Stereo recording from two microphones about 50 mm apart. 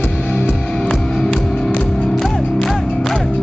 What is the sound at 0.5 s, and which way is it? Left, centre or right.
Music, centre.